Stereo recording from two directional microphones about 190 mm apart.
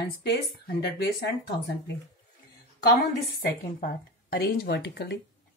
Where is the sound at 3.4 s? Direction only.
55° left (ahead or behind).